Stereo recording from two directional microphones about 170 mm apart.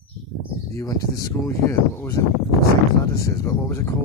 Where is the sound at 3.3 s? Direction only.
15° left (ahead or behind).